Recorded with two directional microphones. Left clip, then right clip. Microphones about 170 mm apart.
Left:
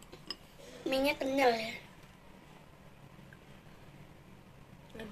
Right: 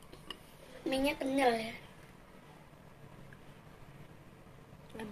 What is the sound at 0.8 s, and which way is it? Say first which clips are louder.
Speech: left 2 dB; 5° left (ahead or behind).